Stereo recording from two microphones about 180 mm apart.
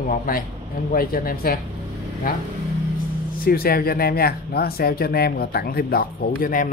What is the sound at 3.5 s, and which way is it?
Speech, 55° left (ahead or behind).